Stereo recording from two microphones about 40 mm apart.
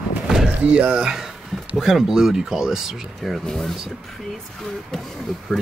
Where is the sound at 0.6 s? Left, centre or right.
Right.